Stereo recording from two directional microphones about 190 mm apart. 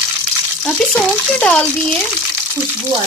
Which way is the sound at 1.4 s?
5° left (ahead or behind).